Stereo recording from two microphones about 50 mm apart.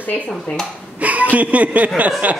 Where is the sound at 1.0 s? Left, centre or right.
Right.